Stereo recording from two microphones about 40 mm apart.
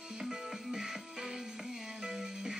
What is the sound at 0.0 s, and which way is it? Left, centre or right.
Music, centre.